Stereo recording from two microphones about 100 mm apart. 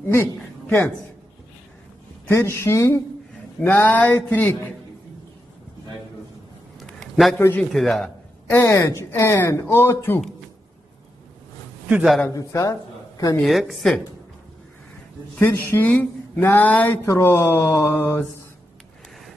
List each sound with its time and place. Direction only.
0.0 s a woman's voice: 20° left (ahead or behind)
2.2 s speech: 25° left (ahead or behind)
6.8 s a sound: centre (ahead or behind)
7.3 s speech: 20° left (ahead or behind)
7.7 s a woman's voice: centre (ahead or behind)
8.5 s speech: 25° left (ahead or behind)
12.3 s a man's voice: 30° left (ahead or behind)
13.5 s a woman's voice: centre (ahead or behind)
15.3 s speech: 20° left (ahead or behind)